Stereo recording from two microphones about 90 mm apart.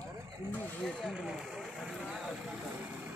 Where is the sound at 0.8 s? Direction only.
Centre (ahead or behind).